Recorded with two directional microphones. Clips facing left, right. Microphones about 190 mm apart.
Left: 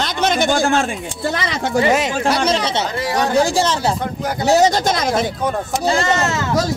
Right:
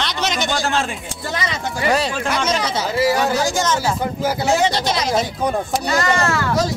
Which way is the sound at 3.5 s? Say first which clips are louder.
Left 2 dB; 35° left (ahead or behind).